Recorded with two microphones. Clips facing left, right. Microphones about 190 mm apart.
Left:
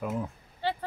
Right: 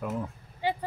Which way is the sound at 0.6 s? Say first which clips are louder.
Right 2 dB; 15° right (ahead or behind).